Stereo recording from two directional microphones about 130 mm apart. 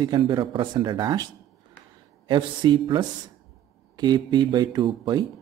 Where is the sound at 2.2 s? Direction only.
35° right (ahead or behind).